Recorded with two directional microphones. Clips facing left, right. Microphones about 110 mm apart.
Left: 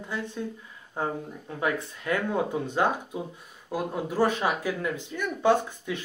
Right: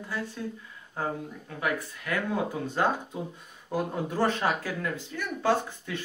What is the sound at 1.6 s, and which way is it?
Speech, 25° left (ahead or behind).